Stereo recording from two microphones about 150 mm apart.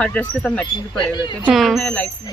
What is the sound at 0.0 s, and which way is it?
Speech, 10° left (ahead or behind).